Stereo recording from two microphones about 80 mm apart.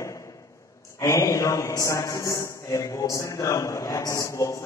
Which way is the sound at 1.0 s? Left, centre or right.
Left.